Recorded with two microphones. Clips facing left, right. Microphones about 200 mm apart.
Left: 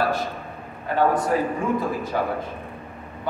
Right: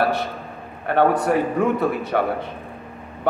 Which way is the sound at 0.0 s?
65° right (ahead or behind).